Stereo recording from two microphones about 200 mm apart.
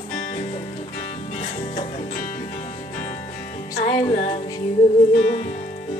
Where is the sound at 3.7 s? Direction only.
35° left (ahead or behind).